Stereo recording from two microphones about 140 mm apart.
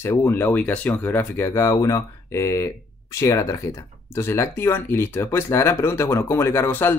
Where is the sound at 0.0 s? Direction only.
20° left (ahead or behind).